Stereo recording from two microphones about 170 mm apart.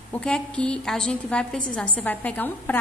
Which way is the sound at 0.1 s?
5° left (ahead or behind).